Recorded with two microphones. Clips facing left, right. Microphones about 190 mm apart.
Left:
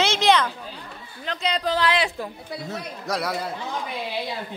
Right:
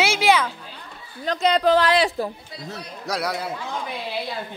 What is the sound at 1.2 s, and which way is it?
Speech, 55° right (ahead or behind).